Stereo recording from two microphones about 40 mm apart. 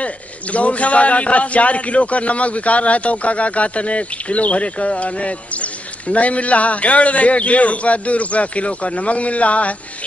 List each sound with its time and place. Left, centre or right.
0.0 s a man's voice: left